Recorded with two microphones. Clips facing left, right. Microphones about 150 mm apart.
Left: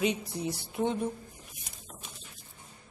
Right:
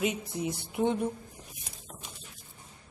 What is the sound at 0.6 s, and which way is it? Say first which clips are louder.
Speech: right 3 dB; 15° right (ahead or behind).